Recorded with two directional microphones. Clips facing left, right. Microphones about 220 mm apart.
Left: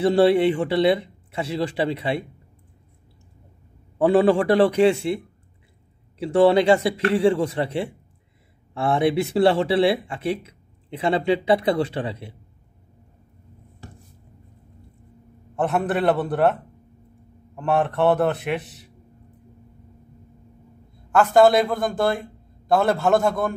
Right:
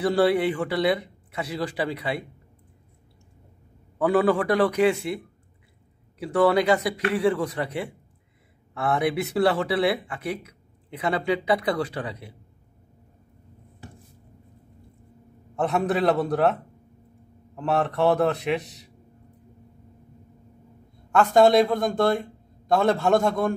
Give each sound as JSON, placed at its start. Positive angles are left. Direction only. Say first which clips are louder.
{"t": 0.0, "sound": "speech", "louder": "left 4 dB", "side_deg": 25}
{"t": 4.0, "sound": "speech", "louder": "left 4 dB", "side_deg": 25}
{"t": 15.6, "sound": "a man's voice", "louder": "left 1 dB", "side_deg": 0}
{"t": 17.6, "sound": "a man's voice", "louder": "left 2 dB", "side_deg": 0}
{"t": 21.1, "sound": "a man's voice", "louder": "left 2 dB", "side_deg": 5}